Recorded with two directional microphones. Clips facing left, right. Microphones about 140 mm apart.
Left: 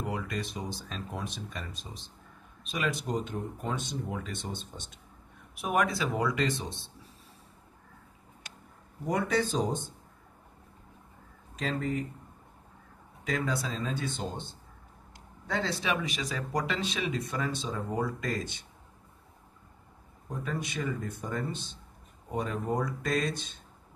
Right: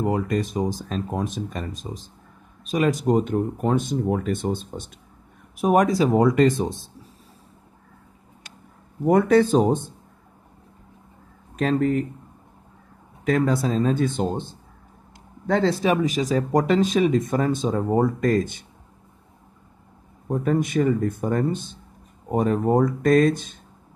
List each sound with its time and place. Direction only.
0.0 s speech: 45° right (ahead or behind)
9.0 s speech: 55° right (ahead or behind)
11.5 s speech: 55° right (ahead or behind)
13.2 s speech: 55° right (ahead or behind)
15.4 s speech: 50° right (ahead or behind)
20.2 s speech: 50° right (ahead or behind)